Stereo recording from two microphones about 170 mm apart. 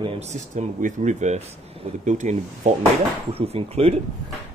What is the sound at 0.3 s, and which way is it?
Speech, 45° right (ahead or behind).